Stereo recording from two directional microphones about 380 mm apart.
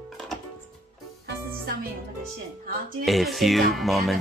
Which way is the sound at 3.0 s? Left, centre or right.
Centre.